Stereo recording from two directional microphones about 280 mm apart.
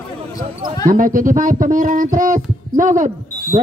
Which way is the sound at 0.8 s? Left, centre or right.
Right.